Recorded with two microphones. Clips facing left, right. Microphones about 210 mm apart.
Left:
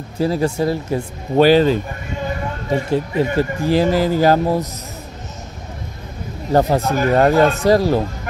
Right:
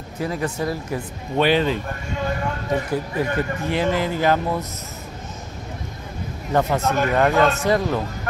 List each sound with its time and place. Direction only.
0.2 s speech: 30° left (ahead or behind)
2.7 s speech: 25° left (ahead or behind)
6.5 s speech: 35° left (ahead or behind)